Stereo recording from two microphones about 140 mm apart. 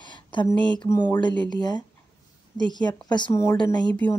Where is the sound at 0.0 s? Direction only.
35° left (ahead or behind).